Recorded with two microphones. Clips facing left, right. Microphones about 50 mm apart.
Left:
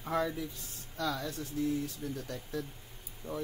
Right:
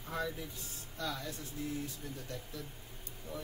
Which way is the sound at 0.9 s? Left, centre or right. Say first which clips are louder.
Left 5 dB; left.